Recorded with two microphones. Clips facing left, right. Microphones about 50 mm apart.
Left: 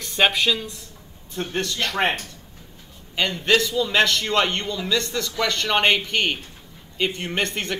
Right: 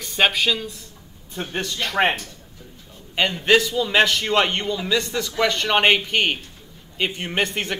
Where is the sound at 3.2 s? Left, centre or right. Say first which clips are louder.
Right 2 dB; centre.